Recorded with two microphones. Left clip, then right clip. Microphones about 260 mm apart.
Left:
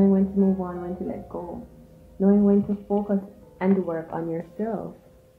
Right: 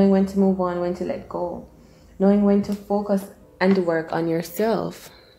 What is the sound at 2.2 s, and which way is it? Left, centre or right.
A woman's voice, right.